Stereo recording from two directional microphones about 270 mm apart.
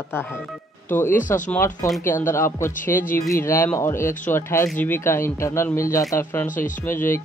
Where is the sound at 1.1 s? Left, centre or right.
Left.